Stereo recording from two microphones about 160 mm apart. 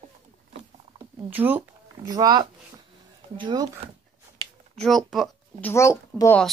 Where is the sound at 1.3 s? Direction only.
10° right (ahead or behind).